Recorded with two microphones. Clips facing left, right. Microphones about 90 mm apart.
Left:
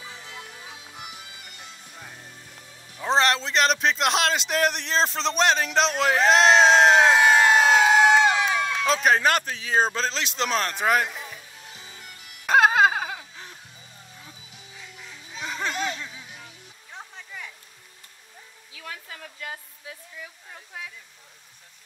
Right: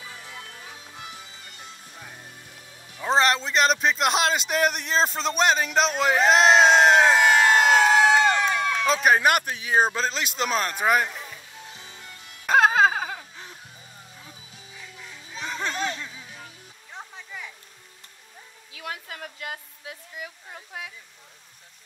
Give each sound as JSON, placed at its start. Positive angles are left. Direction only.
{"t": 0.3, "sound": "music", "side_deg": 10}
{"t": 2.0, "sound": "music", "side_deg": -5}
{"t": 3.0, "sound": "a man's voice", "side_deg": -5}
{"t": 7.2, "sound": "crowd", "side_deg": 5}
{"t": 8.7, "sound": "a man's voice", "side_deg": 0}
{"t": 12.4, "sound": "a sound", "side_deg": 0}
{"t": 15.4, "sound": "a sound", "side_deg": 0}
{"t": 16.9, "sound": "music", "side_deg": 0}
{"t": 18.8, "sound": "a sound", "side_deg": -60}